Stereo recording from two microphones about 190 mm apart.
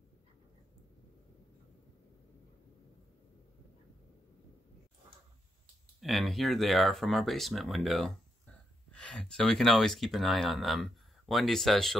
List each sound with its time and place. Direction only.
5.9 s speech: centre (ahead or behind)